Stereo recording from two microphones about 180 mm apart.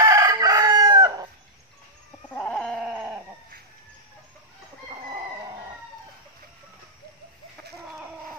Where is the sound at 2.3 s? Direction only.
5° left (ahead or behind).